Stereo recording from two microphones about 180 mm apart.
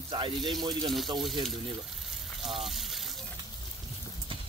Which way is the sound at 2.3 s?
Centre (ahead or behind).